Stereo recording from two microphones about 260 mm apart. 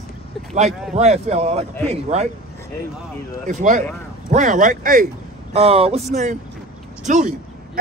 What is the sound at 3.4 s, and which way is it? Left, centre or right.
Speech, right.